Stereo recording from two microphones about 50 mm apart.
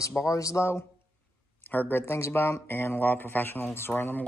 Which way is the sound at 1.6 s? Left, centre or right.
Left.